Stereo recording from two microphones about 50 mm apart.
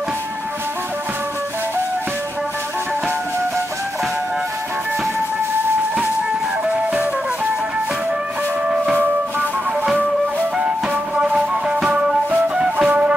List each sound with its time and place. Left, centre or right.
11.1 s music: right